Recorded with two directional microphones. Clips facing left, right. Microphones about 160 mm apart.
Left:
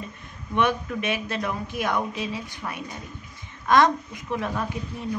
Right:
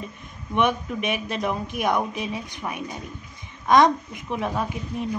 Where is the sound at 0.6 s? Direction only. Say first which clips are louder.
Right 1 dB; 15° right (ahead or behind).